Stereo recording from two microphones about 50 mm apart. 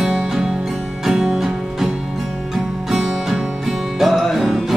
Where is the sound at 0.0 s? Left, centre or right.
Centre.